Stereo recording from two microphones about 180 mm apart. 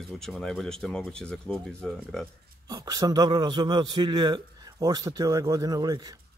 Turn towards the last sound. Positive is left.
turn(degrees=-20)  # may be behind; listen again after turning